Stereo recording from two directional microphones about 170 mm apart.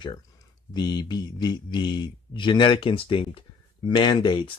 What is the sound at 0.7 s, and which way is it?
Speech, 25° left (ahead or behind).